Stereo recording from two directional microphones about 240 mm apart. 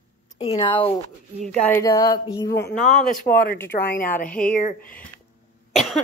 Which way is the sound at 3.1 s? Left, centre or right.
Left.